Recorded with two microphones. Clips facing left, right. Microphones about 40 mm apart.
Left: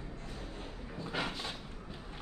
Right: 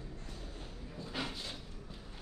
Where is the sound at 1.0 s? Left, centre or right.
Left.